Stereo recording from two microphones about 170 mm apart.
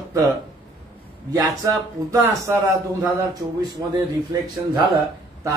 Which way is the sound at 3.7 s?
20° right (ahead or behind).